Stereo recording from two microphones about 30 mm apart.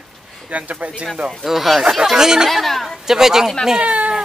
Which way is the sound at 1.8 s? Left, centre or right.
Centre.